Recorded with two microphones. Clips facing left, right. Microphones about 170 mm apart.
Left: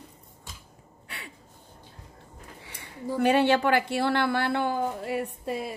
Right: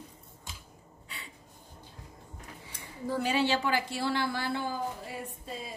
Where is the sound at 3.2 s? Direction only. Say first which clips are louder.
Left 7 dB; 60° left (ahead or behind).